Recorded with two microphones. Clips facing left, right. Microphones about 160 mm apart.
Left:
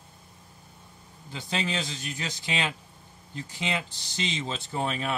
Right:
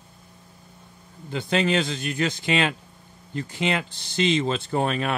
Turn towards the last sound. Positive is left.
turn(degrees=-65)  # may be behind; listen again after turning